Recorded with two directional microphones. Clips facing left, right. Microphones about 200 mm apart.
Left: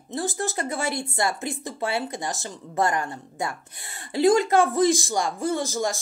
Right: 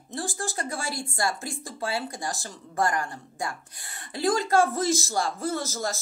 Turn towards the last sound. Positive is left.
turn(degrees=15)  # may be behind; listen again after turning